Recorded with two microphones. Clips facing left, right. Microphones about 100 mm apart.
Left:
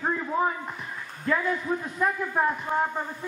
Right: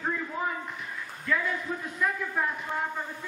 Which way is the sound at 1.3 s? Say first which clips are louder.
Left 4 dB; 35° left (ahead or behind).